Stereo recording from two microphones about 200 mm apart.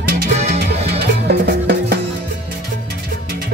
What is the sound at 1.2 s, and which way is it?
Cowbell, 55° right (ahead or behind).